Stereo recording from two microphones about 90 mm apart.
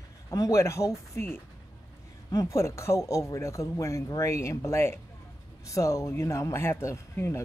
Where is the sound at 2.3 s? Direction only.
40° left (ahead or behind).